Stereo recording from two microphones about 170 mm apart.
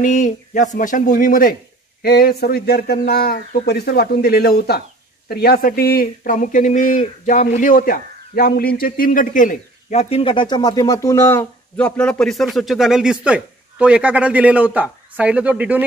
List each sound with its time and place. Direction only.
0.0 s speech: 45° left (ahead or behind)
2.0 s speech: 65° left (ahead or behind); by 15.8 s 10° right (ahead or behind)